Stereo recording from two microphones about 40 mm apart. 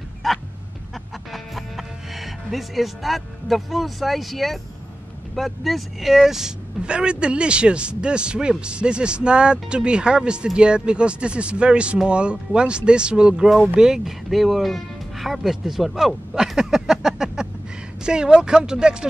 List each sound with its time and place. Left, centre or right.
0.2 s bow-wow: centre
1.3 s speech: centre
6.8 s speech: right
14.3 s speech: centre
16.5 s a sound: centre
18.0 s speech: right